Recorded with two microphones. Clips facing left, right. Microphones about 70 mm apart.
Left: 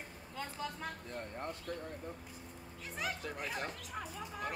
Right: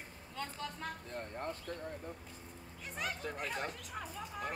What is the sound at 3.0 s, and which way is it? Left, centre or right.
Speech, centre.